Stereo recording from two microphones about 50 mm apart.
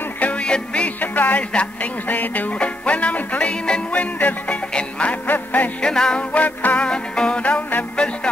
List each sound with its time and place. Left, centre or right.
0.2 s music: left
1.0 s speech: left
1.5 s music: left
2.0 s music: left
3.9 s music: left
5.2 s music: left
5.8 s music: centre
6.3 s music: left
6.8 s music: centre